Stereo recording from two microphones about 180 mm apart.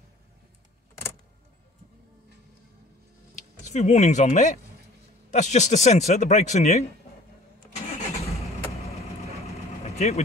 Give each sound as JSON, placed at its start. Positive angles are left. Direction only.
{"t": 3.3, "sound": "a man's voice", "side_deg": 40}
{"t": 9.4, "sound": "vehicle", "side_deg": 35}